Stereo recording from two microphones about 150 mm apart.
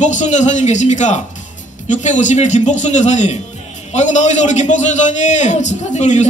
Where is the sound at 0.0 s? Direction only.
55° left (ahead or behind).